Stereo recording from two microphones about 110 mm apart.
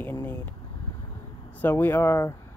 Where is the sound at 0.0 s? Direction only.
20° left (ahead or behind).